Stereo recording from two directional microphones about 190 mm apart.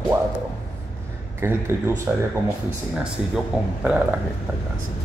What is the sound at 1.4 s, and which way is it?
Speech, 15° right (ahead or behind).